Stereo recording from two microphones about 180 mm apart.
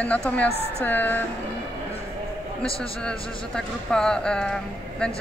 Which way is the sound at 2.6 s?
30° left (ahead or behind).